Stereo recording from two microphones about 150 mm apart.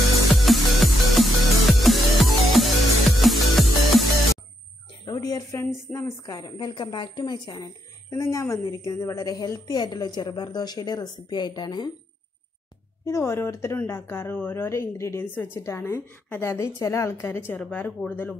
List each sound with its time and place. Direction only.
0.3 s music: centre (ahead or behind)
5.0 s a sound: 25° left (ahead or behind)
5.9 s a woman's voice: 15° left (ahead or behind)
13.0 s a woman's voice: 15° left (ahead or behind)